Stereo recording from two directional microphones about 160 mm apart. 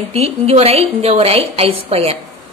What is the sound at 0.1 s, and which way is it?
A woman's voice, 40° right (ahead or behind).